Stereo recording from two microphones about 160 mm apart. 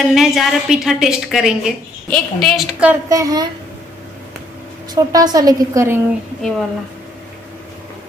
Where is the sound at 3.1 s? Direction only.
20° right (ahead or behind).